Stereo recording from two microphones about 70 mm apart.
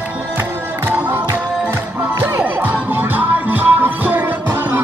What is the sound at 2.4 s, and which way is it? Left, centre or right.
Music, right.